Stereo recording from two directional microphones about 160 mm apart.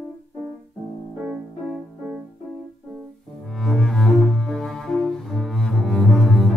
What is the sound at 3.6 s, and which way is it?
Cello, centre (ahead or behind).